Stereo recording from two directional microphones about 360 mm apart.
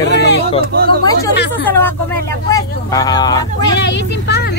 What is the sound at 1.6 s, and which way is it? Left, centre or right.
Speech, centre.